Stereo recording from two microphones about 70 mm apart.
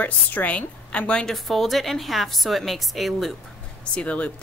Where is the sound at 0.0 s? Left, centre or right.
Left.